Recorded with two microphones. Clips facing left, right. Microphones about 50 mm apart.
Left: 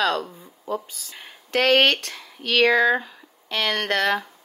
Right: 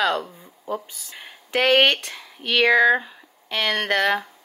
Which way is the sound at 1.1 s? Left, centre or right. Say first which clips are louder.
Even; centre.